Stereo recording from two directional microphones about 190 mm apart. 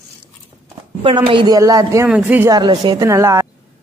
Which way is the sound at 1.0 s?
25° right (ahead or behind).